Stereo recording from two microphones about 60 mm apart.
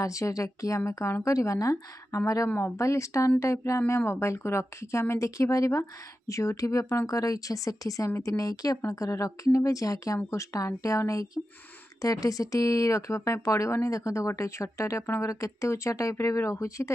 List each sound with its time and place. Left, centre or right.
0.0 s speech: left